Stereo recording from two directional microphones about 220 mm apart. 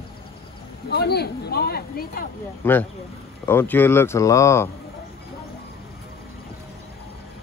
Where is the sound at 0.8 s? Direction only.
50° left (ahead or behind).